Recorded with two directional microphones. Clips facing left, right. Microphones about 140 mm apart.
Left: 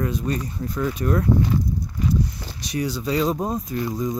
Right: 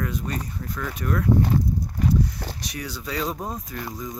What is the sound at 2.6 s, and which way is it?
Speech, 25° left (ahead or behind).